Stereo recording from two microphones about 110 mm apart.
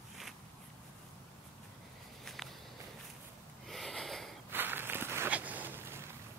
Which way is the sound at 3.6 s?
Centre (ahead or behind).